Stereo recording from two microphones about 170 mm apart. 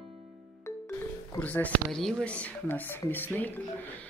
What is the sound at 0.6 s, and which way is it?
Speech, 15° left (ahead or behind).